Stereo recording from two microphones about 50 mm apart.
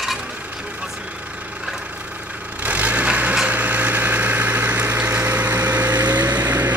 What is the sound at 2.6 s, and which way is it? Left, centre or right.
Vehicle, right.